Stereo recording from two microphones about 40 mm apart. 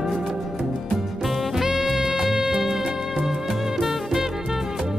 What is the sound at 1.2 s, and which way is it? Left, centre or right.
Music, centre.